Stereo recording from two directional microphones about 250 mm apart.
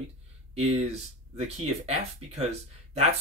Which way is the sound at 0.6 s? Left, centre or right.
Right.